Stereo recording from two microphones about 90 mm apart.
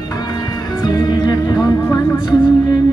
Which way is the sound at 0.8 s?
50° left (ahead or behind).